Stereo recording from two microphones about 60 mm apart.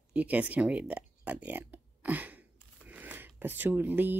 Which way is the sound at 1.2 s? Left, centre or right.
Right.